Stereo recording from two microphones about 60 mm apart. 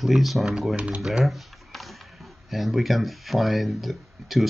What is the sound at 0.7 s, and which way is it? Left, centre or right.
Speech, centre.